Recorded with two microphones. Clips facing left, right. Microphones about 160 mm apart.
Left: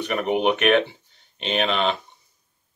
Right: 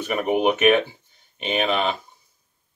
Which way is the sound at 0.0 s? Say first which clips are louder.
Right 1 dB; 5° right (ahead or behind).